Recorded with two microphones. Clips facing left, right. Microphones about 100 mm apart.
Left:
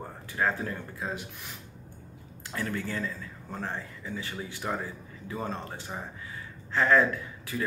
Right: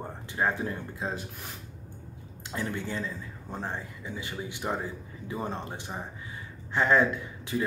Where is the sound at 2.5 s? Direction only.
20° right (ahead or behind).